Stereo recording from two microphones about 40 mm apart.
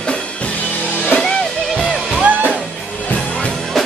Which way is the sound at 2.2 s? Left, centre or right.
Right.